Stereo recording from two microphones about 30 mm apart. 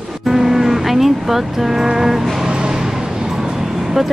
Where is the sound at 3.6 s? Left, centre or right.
Centre.